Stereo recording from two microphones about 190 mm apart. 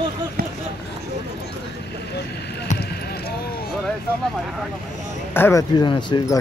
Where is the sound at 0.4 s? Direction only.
55° right (ahead or behind).